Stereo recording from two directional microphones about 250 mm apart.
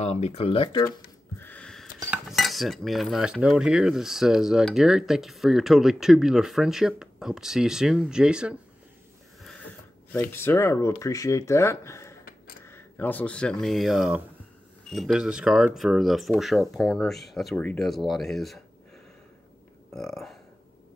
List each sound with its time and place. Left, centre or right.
0.0 s speech: left
1.4 s a sound: centre
2.0 s cutlery: centre
9.4 s a sound: centre
10.3 s speech: centre
14.9 s cutlery: centre
19.9 s burping: centre